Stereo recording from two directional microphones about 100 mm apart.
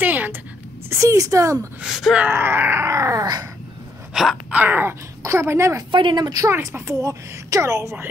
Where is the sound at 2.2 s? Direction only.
20° right (ahead or behind); by 3.4 s 40° right (ahead or behind).